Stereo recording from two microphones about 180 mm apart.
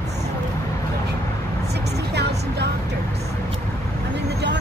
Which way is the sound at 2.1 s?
65° right (ahead or behind).